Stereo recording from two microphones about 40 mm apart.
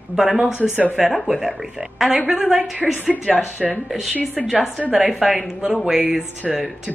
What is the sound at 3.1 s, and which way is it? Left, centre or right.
Speech, left.